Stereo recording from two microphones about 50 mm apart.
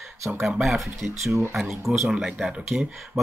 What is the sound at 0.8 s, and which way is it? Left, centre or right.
Speech, centre.